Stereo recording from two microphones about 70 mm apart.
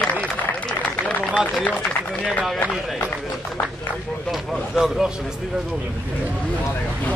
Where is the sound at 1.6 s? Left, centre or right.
Centre.